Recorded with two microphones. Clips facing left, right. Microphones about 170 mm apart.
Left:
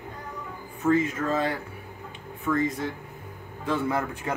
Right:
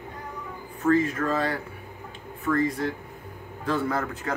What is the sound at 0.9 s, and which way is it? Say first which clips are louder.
Speech: right 1 dB; 20° left (ahead or behind).